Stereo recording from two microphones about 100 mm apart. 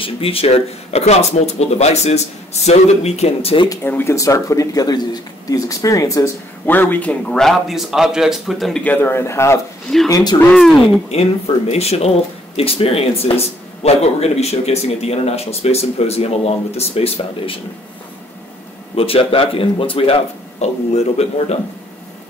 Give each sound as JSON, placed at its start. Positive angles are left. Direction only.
{"t": 0.0, "sound": "speech", "side_deg": 70}
{"t": 3.8, "sound": "speech", "side_deg": 25}
{"t": 6.6, "sound": "a man's voice", "side_deg": 20}
{"t": 8.8, "sound": "speech", "side_deg": 20}
{"t": 10.0, "sound": "speech", "side_deg": 40}
{"t": 10.5, "sound": "a man's voice", "side_deg": 5}
{"t": 11.1, "sound": "speech", "side_deg": 90}
{"t": 12.5, "sound": "speech", "side_deg": 75}
{"t": 13.8, "sound": "speech", "side_deg": 90}
{"t": 18.9, "sound": "speech", "side_deg": 70}
{"t": 20.6, "sound": "speech", "side_deg": 90}